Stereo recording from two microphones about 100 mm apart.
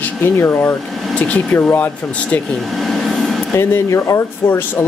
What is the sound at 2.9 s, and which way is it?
Vehicle, centre (ahead or behind).